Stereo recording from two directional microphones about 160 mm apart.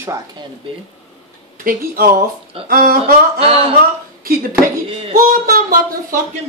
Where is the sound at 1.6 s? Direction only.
65° right (ahead or behind).